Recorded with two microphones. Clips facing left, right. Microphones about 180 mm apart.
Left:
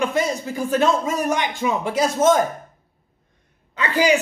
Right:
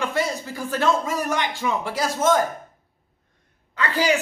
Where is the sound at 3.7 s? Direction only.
20° left (ahead or behind).